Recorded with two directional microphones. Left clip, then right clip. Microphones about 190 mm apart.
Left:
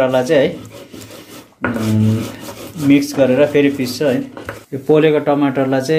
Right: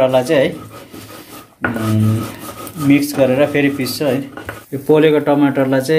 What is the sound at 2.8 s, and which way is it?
Speech, 5° right (ahead or behind).